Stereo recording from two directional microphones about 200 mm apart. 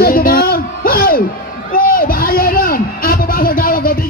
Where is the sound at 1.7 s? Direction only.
45° left (ahead or behind).